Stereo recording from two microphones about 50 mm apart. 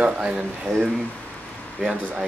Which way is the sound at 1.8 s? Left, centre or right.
Centre.